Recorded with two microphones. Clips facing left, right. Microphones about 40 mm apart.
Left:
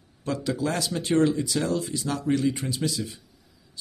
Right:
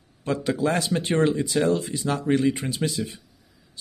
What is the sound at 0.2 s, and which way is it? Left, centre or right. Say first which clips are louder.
Speech: right 3 dB; right.